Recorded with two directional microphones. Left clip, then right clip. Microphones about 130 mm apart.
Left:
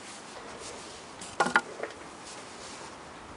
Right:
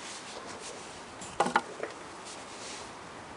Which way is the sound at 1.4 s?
5° left (ahead or behind).